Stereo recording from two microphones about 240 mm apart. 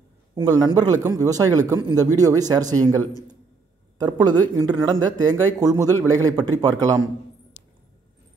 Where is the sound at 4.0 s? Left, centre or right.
Centre.